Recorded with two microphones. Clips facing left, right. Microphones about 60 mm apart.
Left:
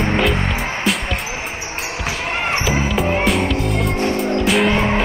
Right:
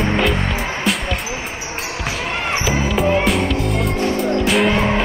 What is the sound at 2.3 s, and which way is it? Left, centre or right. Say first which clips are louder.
Basketball bounce: left 2 dB; centre.